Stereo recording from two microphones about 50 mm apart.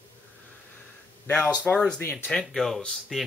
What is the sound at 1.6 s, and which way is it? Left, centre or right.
Speech, left.